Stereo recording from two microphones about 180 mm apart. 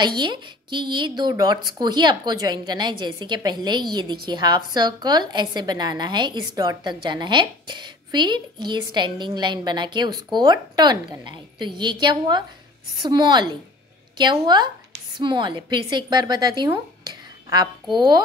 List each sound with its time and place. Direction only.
0.0 s a woman's voice: 25° right (ahead or behind)